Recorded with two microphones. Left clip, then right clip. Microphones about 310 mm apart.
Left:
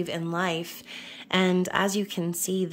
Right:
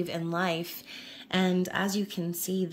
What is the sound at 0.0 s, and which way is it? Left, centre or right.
A woman's voice, centre.